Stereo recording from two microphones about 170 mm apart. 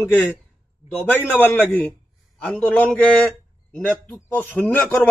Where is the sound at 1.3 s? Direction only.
10° left (ahead or behind).